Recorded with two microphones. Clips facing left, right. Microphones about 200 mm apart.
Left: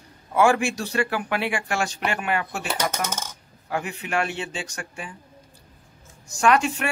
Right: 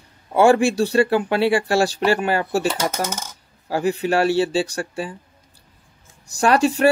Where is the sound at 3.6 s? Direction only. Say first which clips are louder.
Right 9 dB; 35° right (ahead or behind).